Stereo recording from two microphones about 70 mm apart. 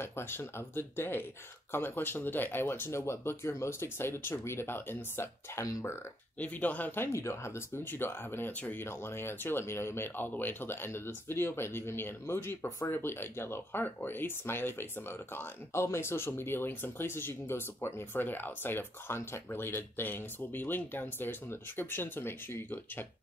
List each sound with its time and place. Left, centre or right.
0.0 s speech: left
6.4 s speech: left
7.1 s speech: left
8.5 s speech: left
8.8 s speech: left